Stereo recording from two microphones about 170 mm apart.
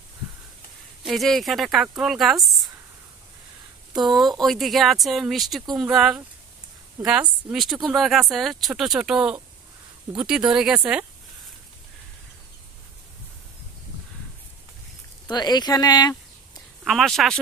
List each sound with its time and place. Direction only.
1.0 s speech: centre (ahead or behind)
3.9 s speech: centre (ahead or behind)
15.2 s speech: 25° left (ahead or behind)
16.8 s speech: centre (ahead or behind)